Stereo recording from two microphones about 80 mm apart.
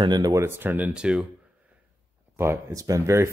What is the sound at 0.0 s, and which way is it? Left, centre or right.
Speech, right.